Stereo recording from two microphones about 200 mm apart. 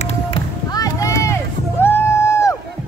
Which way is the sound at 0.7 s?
15° left (ahead or behind).